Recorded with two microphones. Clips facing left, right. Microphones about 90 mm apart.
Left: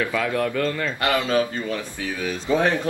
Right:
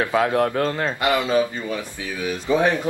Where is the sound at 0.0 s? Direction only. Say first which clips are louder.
Right 4 dB; 35° right (ahead or behind).